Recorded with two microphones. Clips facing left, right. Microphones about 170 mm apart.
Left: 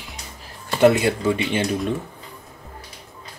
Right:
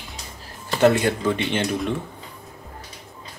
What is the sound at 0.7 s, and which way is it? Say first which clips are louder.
Speech: left 2 dB; 15° left (ahead or behind).